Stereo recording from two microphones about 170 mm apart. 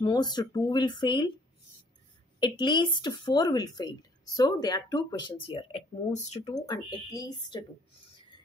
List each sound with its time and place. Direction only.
0.0 s speech: 25° left (ahead or behind)
2.4 s speech: 25° left (ahead or behind)
6.5 s speech: 20° left (ahead or behind)